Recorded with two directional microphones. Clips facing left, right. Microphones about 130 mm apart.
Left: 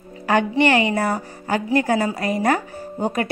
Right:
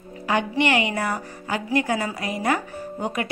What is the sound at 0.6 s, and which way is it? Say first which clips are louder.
A woman's voice: left 4 dB; 35° left (ahead or behind).